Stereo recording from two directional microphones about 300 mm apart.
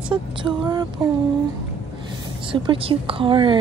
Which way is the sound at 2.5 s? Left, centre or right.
Centre.